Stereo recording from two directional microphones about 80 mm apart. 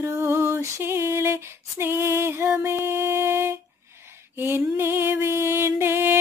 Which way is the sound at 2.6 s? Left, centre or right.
Right.